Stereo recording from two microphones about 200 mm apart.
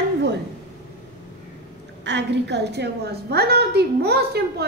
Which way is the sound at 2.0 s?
60° right (ahead or behind).